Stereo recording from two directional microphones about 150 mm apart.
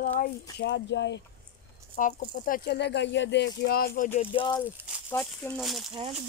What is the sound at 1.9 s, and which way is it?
Speech, 70° left (ahead or behind).